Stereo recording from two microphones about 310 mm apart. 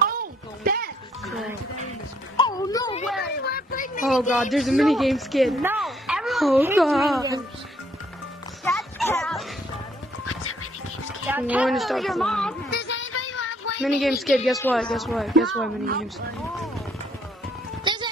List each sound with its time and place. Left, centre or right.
0.0 s a sound: right
2.3 s music: centre
3.4 s a sound: left
4.0 s a woman's voice: centre
7.2 s speech: centre
8.6 s children playing: centre
10.2 s music: left
11.2 s a woman's voice: centre
12.7 s child singing: left
13.8 s a woman's voice: centre